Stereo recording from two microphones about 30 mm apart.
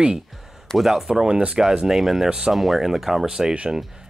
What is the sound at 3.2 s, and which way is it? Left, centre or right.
Speech, right.